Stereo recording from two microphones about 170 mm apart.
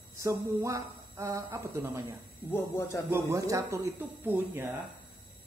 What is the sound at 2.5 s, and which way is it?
Speech, 15° left (ahead or behind).